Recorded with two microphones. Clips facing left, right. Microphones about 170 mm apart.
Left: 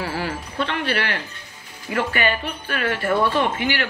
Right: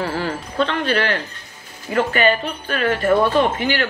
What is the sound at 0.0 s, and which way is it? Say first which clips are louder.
Speech: right 3 dB; 45° right (ahead or behind).